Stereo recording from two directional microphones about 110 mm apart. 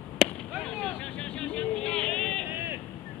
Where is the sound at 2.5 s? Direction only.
20° right (ahead or behind).